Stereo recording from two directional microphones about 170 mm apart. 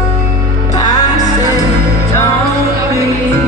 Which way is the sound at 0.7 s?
20° left (ahead or behind).